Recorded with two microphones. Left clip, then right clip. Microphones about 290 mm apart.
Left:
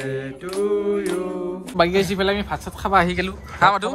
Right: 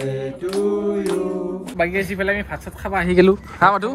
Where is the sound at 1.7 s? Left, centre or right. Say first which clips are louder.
Left 3 dB; centre.